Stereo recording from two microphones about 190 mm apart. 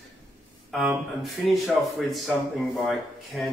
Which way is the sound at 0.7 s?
Centre (ahead or behind).